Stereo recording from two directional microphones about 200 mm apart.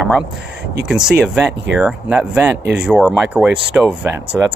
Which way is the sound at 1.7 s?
Centre (ahead or behind).